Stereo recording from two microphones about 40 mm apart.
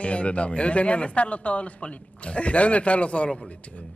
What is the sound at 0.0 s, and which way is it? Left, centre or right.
Speech, left.